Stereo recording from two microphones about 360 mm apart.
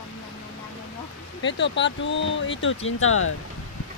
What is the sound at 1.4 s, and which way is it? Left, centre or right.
Speech, left.